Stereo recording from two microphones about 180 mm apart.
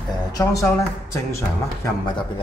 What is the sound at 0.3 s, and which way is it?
Speech, 20° left (ahead or behind).